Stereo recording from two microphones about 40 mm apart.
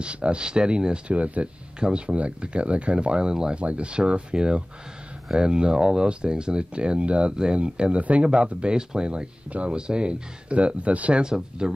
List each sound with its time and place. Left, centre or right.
0.0 s speech: right
1.0 s speech: right
1.8 s speech: right
9.5 s speech: right
9.8 s speech: right
11.2 s speech: centre